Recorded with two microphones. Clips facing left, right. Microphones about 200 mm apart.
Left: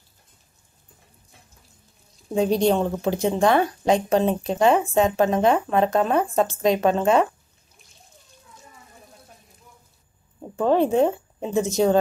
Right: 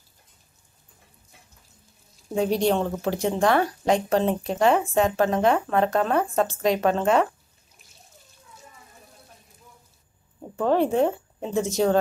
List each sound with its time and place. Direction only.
2.3 s a woman's voice: 20° left (ahead or behind)
10.6 s speech: 15° left (ahead or behind)